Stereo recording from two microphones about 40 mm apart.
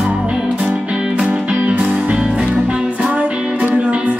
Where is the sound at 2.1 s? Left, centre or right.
Centre.